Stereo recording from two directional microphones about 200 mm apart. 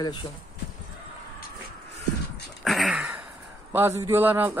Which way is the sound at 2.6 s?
Centre (ahead or behind).